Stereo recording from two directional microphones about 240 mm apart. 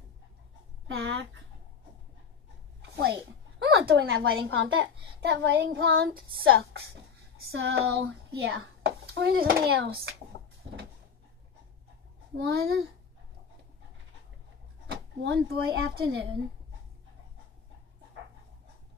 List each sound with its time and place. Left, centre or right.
0.8 s speech: right
2.8 s a woman's voice: right
5.2 s speech: right
8.4 s a child's voice: right
12.4 s speech: right
14.9 s speech: right